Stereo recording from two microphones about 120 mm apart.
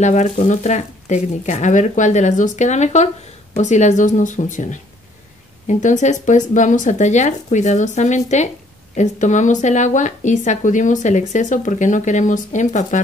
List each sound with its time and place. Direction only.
0.0 s speech: 75° left (ahead or behind)